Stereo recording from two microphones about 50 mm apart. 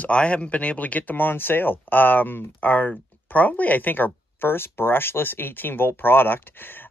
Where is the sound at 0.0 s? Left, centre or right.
Left.